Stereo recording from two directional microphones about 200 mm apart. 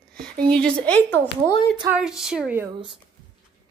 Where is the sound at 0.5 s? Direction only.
5° left (ahead or behind).